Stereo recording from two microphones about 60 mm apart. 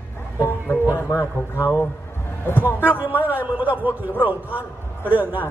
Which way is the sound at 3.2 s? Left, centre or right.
Right.